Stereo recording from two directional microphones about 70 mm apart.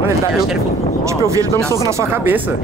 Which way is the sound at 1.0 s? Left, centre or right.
Right.